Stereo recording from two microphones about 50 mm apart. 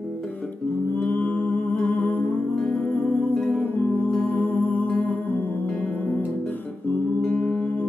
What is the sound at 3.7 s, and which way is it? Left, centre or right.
Music, left.